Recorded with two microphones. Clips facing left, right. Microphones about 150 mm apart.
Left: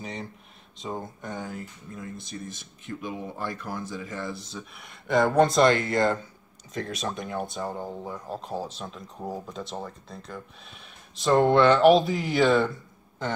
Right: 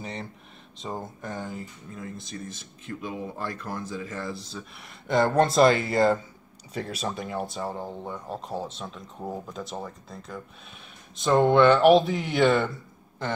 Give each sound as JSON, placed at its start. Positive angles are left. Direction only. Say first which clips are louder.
{"t": 0.0, "sound": "speech", "louder": "even", "side_deg": 0}